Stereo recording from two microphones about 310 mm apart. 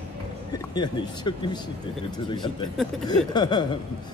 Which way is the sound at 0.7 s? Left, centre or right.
Centre.